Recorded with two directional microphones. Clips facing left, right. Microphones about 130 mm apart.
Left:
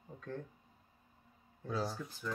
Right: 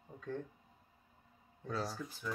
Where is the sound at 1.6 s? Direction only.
Centre (ahead or behind).